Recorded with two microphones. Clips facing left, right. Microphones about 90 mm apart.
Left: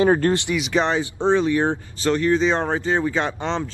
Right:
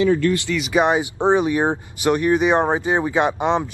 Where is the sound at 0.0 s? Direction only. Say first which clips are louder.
Even; 40° left (ahead or behind).